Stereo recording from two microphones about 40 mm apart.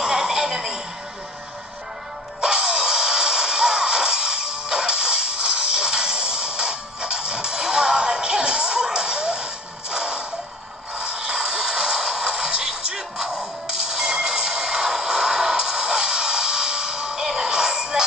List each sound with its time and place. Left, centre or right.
0.0 s music: centre
2.4 s music: centre
11.0 s a sound: centre